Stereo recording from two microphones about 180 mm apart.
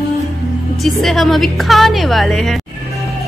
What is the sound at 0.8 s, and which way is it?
A woman's voice, centre (ahead or behind).